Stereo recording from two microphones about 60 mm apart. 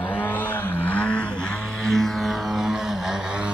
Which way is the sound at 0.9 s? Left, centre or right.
Left.